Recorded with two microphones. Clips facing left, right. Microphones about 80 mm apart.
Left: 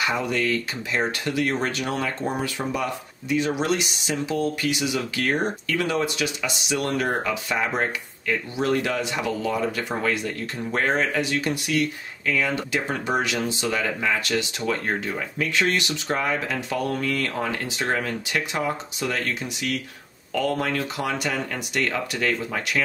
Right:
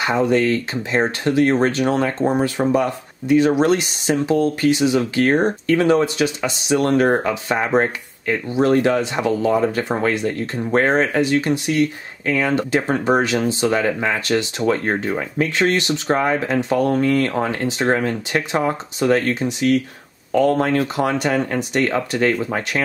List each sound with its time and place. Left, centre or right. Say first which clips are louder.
0.0 s speech: right 7 dB; right